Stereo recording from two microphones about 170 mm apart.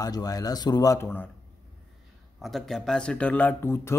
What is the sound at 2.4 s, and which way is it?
Speech, centre (ahead or behind).